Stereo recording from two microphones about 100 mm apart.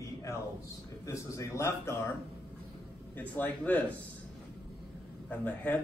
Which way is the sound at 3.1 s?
15° left (ahead or behind).